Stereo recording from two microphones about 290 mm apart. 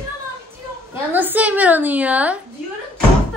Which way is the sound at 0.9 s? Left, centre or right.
Centre.